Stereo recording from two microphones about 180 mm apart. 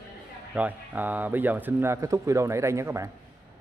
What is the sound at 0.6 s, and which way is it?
A man's voice, 10° right (ahead or behind).